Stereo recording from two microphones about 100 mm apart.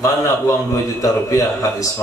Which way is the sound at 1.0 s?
35° left (ahead or behind).